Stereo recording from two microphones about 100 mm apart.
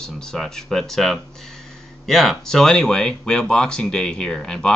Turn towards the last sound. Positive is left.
turn(degrees=10)  # may be behind; listen again after turning